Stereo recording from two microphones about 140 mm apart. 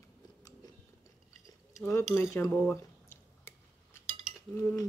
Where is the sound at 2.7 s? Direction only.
15° left (ahead or behind).